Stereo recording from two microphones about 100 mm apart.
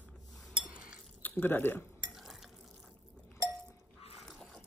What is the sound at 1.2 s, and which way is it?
Speech, 20° left (ahead or behind).